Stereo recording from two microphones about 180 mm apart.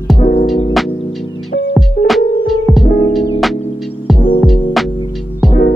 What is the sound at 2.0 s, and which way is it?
Music, 55° left (ahead or behind).